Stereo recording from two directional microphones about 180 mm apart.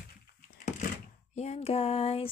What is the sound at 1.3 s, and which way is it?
Female singing, 40° left (ahead or behind).